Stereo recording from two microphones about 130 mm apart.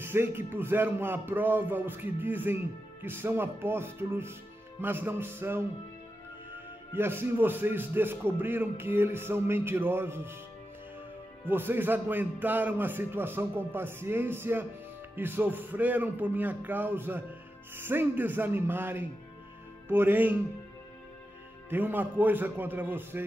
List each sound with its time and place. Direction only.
0.0 s speech: 20° right (ahead or behind)
11.4 s speech: 15° right (ahead or behind)
21.6 s speech: 15° right (ahead or behind)